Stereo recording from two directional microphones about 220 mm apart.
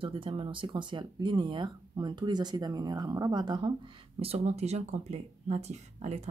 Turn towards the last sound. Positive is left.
turn(degrees=-30)  # may be behind; listen again after turning